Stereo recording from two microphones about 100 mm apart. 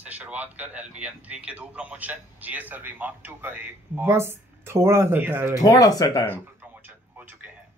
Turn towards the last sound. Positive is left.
turn(degrees=-15)  # may be behind; listen again after turning